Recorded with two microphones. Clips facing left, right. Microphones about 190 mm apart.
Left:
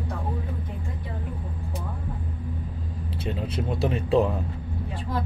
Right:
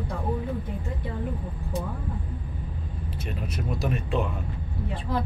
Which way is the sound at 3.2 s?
30° left (ahead or behind).